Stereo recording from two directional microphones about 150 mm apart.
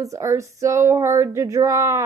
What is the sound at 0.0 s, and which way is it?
A woman's voice, 20° right (ahead or behind).